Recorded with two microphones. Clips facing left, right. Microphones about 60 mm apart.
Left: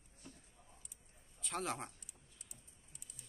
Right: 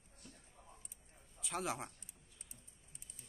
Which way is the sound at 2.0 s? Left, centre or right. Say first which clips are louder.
Even; right.